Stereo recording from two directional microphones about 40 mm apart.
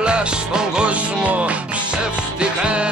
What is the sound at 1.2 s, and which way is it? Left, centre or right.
Music, right.